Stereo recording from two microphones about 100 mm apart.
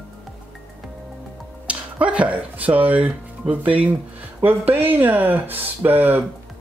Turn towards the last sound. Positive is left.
turn(degrees=-20)  # may be behind; listen again after turning